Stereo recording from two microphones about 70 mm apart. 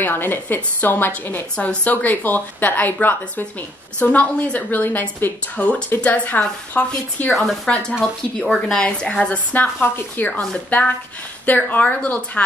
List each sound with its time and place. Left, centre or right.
0.0 s a woman's voice: left
7.2 s a woman's voice: centre
9.2 s a woman's voice: left